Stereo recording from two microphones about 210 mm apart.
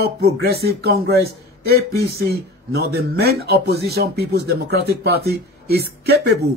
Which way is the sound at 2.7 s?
50° right (ahead or behind).